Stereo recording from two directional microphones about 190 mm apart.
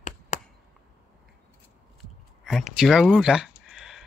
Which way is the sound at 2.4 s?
Centre (ahead or behind).